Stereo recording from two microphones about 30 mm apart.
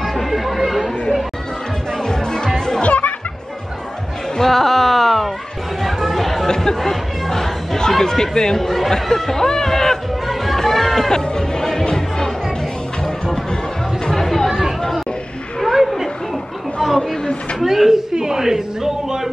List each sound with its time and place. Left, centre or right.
0.0 s music: centre
2.0 s music: left
2.8 s music: left
4.4 s a sound: centre
5.8 s chatter: centre
6.4 s chatter: centre
8.0 s speech: centre
8.5 s speech: centre
10.2 s music: centre
11.3 s music: left
14.2 s chatter: centre
15.6 s a sound: centre
17.6 s speech: centre